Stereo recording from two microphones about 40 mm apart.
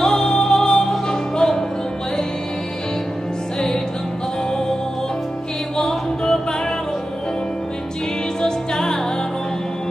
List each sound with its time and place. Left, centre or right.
0.0 s music: centre
5.8 s music: centre
8.4 s music: centre